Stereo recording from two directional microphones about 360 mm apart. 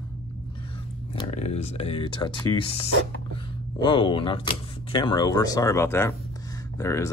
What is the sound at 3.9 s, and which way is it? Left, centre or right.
Speech, centre.